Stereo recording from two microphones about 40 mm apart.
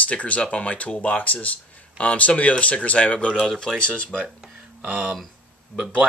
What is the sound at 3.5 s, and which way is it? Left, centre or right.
Speech, left.